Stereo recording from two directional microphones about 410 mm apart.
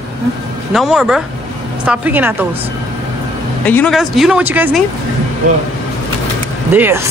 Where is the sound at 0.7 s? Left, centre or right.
Centre.